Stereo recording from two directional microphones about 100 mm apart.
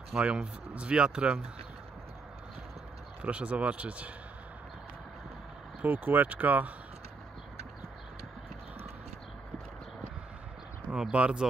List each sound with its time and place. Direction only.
0.1 s speech: 10° right (ahead or behind)
3.2 s speech: 15° right (ahead or behind)
5.8 s speech: 20° right (ahead or behind)
10.9 s speech: 10° right (ahead or behind)